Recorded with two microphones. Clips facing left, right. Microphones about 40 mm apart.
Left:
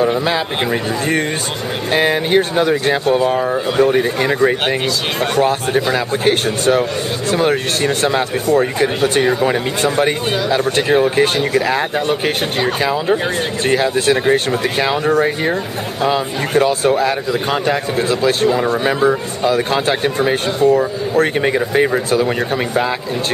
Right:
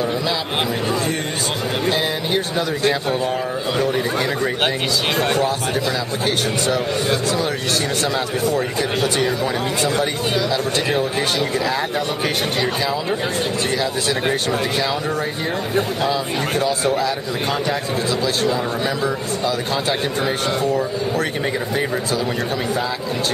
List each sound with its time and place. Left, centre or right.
1.9 s a man's voice: left
13.7 s a man's voice: left
16.1 s a man's voice: left